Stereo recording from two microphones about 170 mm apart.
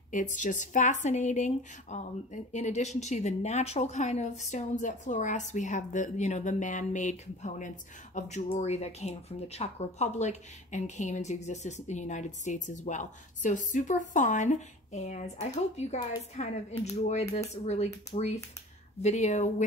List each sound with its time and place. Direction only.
0.1 s a woman's voice: 45° left (ahead or behind)